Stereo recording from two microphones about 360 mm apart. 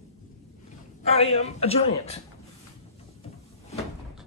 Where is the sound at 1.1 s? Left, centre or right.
Centre.